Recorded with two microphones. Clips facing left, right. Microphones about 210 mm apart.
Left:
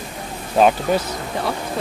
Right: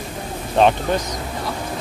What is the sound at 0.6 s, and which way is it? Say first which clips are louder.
Speech: left 1 dB; 5° left (ahead or behind).